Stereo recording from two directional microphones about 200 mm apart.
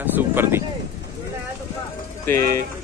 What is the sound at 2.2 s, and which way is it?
Speech, 15° left (ahead or behind).